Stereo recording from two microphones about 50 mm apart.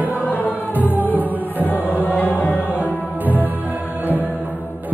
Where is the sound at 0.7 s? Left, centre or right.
Right.